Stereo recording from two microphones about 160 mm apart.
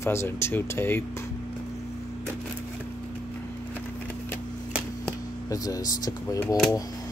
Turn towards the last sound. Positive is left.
turn(degrees=0)  # may be behind; listen again after turning